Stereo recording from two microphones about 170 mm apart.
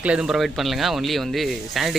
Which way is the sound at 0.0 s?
5° right (ahead or behind).